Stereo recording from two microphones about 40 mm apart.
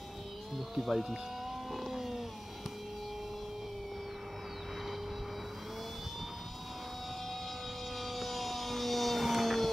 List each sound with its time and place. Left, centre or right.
0.7 s vehicle: centre
8.0 s vehicle: centre